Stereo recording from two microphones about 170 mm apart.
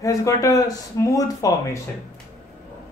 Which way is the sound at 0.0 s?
20° left (ahead or behind).